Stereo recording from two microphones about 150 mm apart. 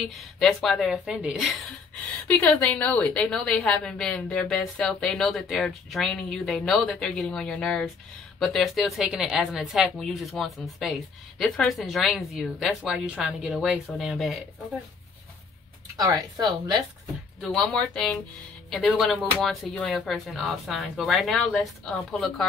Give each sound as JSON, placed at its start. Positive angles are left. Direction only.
{"t": 0.1, "sound": "a woman's voice", "side_deg": 0}
{"t": 16.0, "sound": "speech", "side_deg": -25}
{"t": 17.4, "sound": "a woman's voice", "side_deg": 5}